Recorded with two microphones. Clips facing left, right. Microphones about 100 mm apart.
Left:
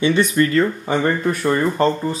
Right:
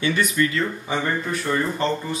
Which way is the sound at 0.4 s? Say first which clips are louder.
Left 6 dB; 50° left (ahead or behind).